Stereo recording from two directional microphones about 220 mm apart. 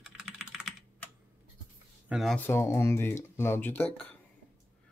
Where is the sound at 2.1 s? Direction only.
Centre (ahead or behind).